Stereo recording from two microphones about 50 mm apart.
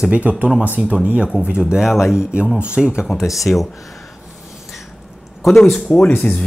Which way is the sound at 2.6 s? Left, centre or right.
Centre.